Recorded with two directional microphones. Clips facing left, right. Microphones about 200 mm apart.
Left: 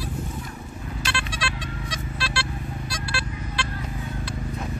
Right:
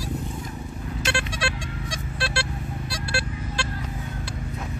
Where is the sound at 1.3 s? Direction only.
50° right (ahead or behind).